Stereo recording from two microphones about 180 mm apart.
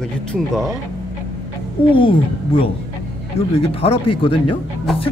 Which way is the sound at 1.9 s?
30° left (ahead or behind).